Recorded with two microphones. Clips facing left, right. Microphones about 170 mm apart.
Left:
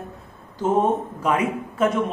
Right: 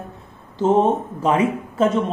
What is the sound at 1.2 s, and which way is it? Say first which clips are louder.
Speech: right 6 dB; 30° right (ahead or behind).